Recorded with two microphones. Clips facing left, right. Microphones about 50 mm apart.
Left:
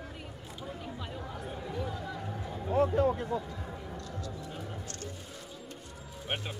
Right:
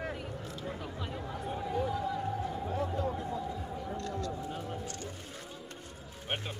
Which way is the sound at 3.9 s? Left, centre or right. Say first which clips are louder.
Right 5 dB; right.